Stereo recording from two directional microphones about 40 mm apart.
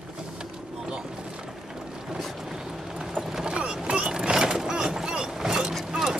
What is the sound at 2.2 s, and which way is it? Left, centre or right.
Boat, centre.